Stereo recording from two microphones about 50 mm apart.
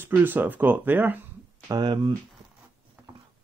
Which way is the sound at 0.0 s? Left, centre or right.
Right.